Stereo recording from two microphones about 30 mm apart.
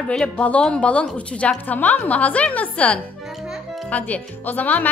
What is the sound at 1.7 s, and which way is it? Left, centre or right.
Speech, left.